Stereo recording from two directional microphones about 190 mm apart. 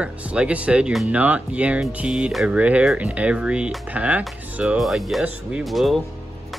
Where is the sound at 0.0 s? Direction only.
5° right (ahead or behind).